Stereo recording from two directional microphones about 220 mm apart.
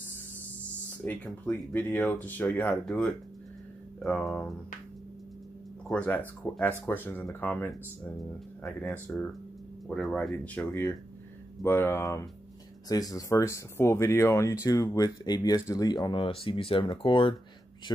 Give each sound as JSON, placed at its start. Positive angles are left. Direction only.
{"t": 1.0, "sound": "speech", "side_deg": 5}
{"t": 5.9, "sound": "speech", "side_deg": 5}
{"t": 8.8, "sound": "speech", "side_deg": 5}